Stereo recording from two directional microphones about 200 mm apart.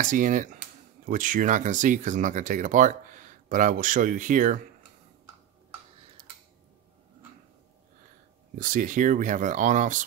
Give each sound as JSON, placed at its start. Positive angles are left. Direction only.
{"t": 0.0, "sound": "speech", "side_deg": -40}
{"t": 8.5, "sound": "speech", "side_deg": -40}